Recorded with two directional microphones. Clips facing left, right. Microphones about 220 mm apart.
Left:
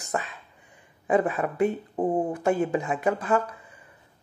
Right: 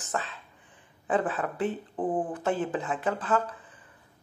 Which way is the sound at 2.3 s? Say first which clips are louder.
Left 5 dB; 10° left (ahead or behind).